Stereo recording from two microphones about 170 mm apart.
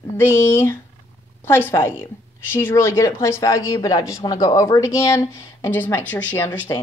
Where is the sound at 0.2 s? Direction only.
15° left (ahead or behind).